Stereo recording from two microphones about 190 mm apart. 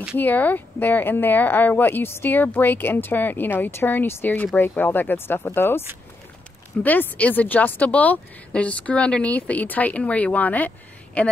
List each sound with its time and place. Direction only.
0.2 s speech: 10° left (ahead or behind)